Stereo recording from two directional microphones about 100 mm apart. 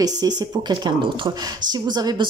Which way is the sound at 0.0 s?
40° right (ahead or behind).